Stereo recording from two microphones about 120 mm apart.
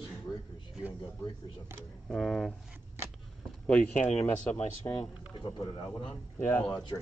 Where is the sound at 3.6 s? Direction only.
10° left (ahead or behind).